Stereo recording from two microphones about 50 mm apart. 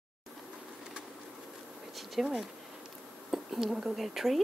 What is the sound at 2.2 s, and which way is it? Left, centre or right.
A woman's voice, centre.